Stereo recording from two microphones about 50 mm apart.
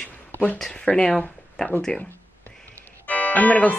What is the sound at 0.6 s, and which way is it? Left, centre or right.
Speech, centre.